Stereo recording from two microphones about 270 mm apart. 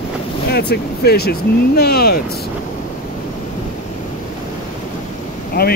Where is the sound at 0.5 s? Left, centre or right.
Left.